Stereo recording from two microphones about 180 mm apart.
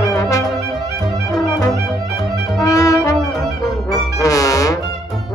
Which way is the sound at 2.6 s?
20° left (ahead or behind).